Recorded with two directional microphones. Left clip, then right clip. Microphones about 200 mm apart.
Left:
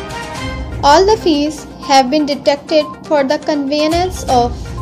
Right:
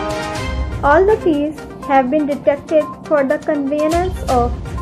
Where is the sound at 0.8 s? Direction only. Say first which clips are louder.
Left 3 dB; 40° left (ahead or behind).